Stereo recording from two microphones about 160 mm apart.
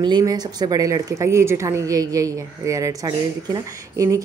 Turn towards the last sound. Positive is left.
turn(degrees=-20)  # may be behind; listen again after turning